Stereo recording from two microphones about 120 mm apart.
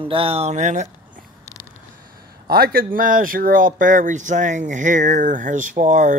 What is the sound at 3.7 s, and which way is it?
Speech, 90° right.